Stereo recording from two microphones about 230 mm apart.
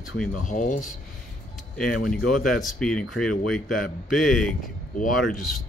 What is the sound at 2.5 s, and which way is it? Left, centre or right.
Speech, centre.